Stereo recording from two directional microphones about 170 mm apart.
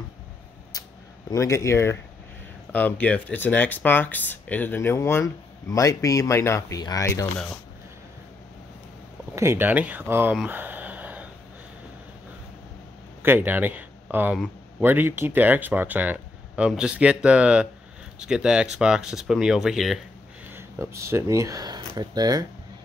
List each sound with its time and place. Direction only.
0.7 s a sound: 20° left (ahead or behind)
1.3 s speech: 20° left (ahead or behind)
9.3 s speech: 15° right (ahead or behind)
13.2 s speech: 10° right (ahead or behind)
20.5 s speech: 15° right (ahead or behind)